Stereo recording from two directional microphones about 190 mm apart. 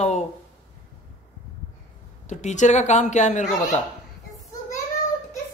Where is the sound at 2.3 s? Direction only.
40° left (ahead or behind).